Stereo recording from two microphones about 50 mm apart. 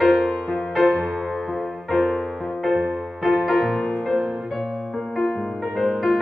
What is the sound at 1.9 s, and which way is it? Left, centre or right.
Music, centre.